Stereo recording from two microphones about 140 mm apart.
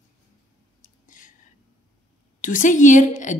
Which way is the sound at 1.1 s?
70° left (ahead or behind).